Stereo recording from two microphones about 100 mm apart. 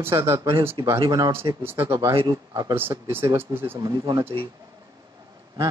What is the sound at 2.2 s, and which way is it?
Speech, 40° right (ahead or behind).